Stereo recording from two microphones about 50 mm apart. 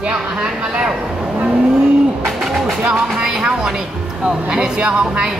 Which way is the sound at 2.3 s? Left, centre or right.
Centre.